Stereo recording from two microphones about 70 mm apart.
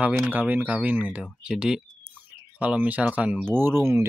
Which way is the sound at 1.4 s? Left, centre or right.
Centre.